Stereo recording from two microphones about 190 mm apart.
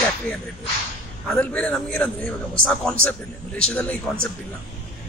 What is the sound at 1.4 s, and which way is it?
A man's voice, 5° left (ahead or behind).